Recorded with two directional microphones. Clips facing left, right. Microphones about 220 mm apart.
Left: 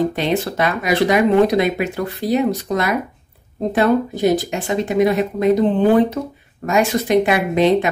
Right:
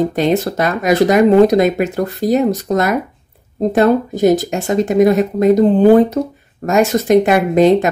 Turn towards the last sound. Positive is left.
turn(degrees=-45)  # may be behind; listen again after turning